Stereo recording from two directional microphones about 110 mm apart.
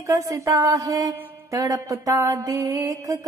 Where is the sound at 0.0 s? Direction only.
30° right (ahead or behind).